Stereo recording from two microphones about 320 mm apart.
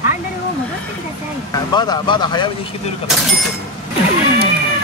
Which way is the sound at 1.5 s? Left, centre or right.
Centre.